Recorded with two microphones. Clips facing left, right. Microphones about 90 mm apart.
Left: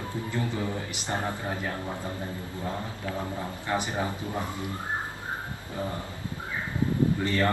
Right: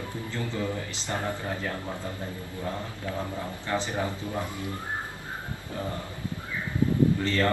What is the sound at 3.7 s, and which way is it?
A man's voice, 20° left (ahead or behind).